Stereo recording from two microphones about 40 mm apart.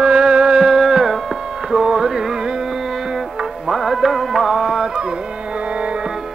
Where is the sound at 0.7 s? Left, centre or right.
Centre.